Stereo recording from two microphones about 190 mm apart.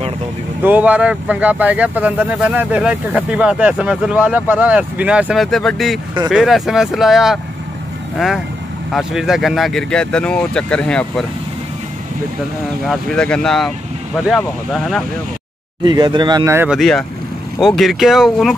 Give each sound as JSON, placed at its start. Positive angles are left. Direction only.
{"t": 0.7, "sound": "speech", "side_deg": -10}
{"t": 8.9, "sound": "speech", "side_deg": 0}
{"t": 12.8, "sound": "speech", "side_deg": 0}
{"t": 15.8, "sound": "speech", "side_deg": -25}
{"t": 16.7, "sound": "speech", "side_deg": 0}